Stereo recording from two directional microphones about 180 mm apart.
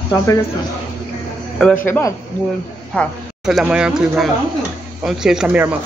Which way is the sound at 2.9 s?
5° left (ahead or behind).